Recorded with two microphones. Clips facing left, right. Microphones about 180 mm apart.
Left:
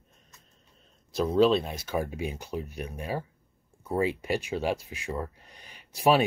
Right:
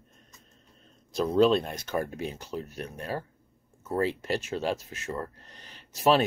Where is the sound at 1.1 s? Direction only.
Centre (ahead or behind).